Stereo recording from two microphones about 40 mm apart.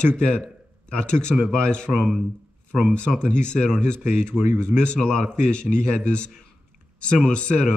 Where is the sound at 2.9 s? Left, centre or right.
Left.